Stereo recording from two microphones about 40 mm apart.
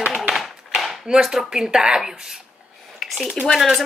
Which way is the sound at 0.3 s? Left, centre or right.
Centre.